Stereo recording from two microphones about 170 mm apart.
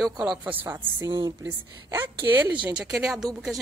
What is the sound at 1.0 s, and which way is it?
Speech, 25° right (ahead or behind).